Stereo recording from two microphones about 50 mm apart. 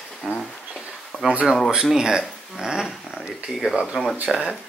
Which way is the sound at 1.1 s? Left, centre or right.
Left.